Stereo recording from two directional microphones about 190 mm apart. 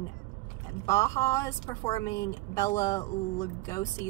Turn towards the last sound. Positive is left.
turn(degrees=15)  # may be behind; listen again after turning